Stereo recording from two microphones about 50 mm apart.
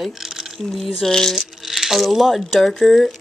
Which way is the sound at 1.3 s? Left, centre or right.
Centre.